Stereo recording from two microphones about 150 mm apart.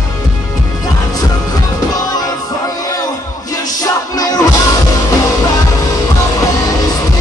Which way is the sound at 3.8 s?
25° left (ahead or behind).